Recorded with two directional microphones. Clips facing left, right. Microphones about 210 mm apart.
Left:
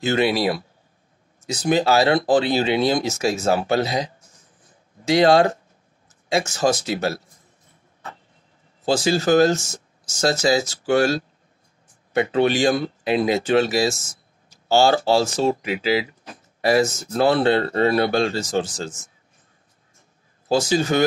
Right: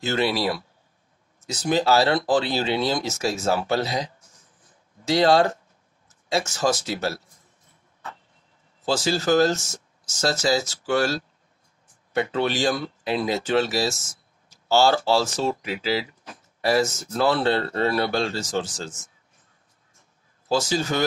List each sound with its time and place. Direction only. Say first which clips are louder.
0.0 s speech: left 4 dB; 15° left (ahead or behind)
8.8 s speech: left 4 dB; 15° left (ahead or behind)
14.5 s a sound: left 2 dB; 15° left (ahead or behind)
15.0 s speech: left 4 dB; 15° left (ahead or behind)
20.4 s speech: left 4 dB; 15° left (ahead or behind)